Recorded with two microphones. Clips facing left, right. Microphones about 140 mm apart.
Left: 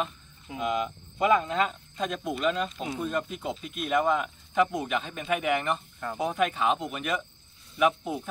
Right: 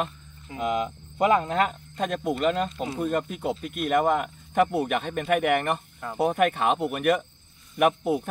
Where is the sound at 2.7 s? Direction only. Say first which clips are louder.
Right 3 dB; 10° right (ahead or behind).